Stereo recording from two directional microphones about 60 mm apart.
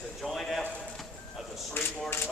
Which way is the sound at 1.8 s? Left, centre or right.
Left.